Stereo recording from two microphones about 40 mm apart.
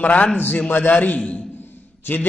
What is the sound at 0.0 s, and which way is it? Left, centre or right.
Speech, left.